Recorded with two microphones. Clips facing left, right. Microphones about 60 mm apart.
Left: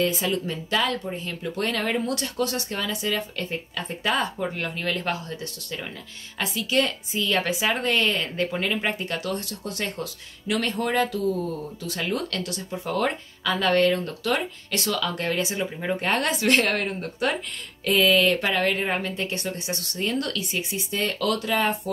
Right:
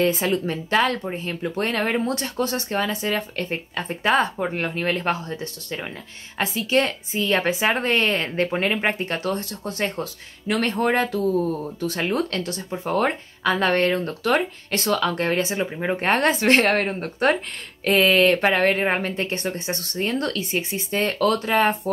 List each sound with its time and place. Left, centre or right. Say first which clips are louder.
0.0 s speech: right 4 dB; right